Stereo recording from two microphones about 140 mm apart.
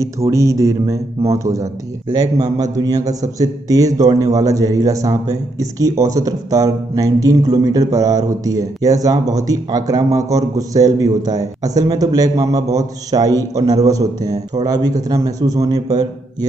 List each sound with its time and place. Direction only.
0.0 s a man's voice: 20° right (ahead or behind)